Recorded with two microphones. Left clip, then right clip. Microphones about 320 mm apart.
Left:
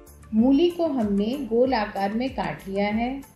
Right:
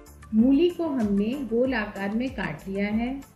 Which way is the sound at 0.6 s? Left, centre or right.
Left.